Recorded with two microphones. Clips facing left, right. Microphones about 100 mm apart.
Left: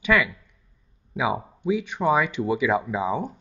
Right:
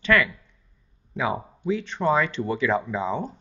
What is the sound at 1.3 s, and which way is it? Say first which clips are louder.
Speech: left 2 dB; 10° left (ahead or behind).